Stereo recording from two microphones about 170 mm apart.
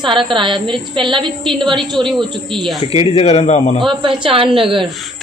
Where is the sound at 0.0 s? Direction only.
30° right (ahead or behind).